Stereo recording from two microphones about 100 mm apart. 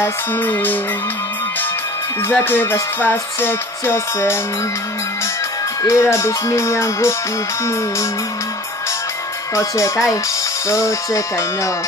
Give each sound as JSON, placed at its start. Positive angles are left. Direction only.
{"t": 0.0, "sound": "music", "side_deg": 15}
{"t": 2.2, "sound": "music", "side_deg": 20}
{"t": 5.8, "sound": "music", "side_deg": 30}
{"t": 9.6, "sound": "speech", "side_deg": 30}
{"t": 10.7, "sound": "music", "side_deg": 30}